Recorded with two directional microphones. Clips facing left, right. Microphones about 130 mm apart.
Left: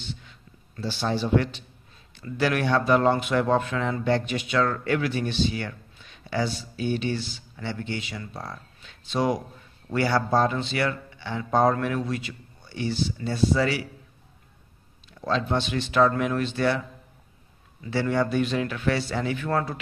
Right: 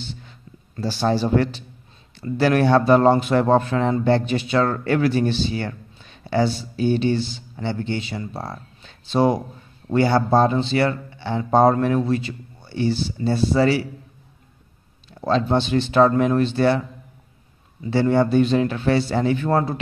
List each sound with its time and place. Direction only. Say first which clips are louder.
0.0 s a sound: right 3 dB; 35° right (ahead or behind)
2.1 s a man's voice: right 7 dB; 35° right (ahead or behind)
15.1 s a man's voice: right 6 dB; 35° right (ahead or behind)
17.8 s speech: right 6 dB; 30° right (ahead or behind)